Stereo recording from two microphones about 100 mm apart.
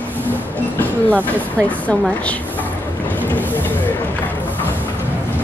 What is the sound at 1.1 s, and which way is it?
Speech, 15° right (ahead or behind).